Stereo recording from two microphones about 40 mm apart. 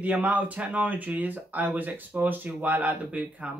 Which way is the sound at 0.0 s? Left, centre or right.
Right.